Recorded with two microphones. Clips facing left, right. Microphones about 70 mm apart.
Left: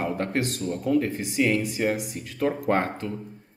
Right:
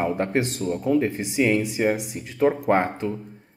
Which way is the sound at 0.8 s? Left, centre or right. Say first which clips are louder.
Right 2 dB; centre.